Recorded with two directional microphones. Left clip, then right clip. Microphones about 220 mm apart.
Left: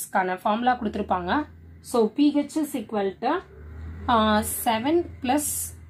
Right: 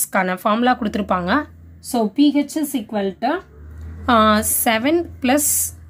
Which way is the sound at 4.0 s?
55° right (ahead or behind).